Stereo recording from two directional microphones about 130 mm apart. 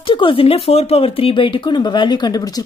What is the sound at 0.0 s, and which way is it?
Speech, 40° left (ahead or behind).